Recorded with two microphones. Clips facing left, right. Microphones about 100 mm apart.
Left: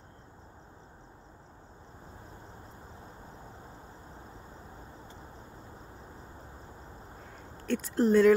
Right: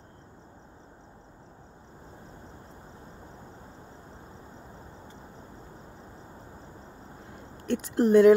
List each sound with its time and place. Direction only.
7.6 s speech: 15° right (ahead or behind)